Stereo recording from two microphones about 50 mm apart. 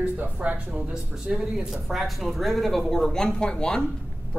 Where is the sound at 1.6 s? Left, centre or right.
Centre.